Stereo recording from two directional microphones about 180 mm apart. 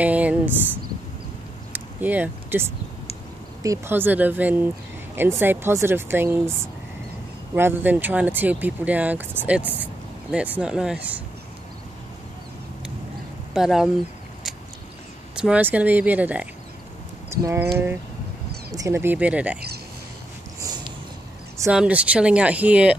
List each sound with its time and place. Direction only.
0.0 s speech: 10° right (ahead or behind)
1.7 s a sound: 10° right (ahead or behind)
3.6 s speech: 15° right (ahead or behind)
7.5 s speech: 10° right (ahead or behind)
13.5 s speech: centre (ahead or behind)
15.3 s speech: 5° right (ahead or behind)
18.7 s speech: 15° right (ahead or behind)
21.6 s speech: 5° right (ahead or behind)